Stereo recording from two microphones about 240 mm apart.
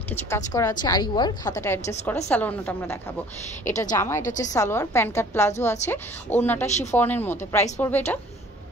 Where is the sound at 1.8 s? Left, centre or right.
Left.